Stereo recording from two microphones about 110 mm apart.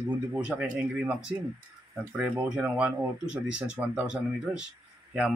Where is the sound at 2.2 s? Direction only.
15° right (ahead or behind).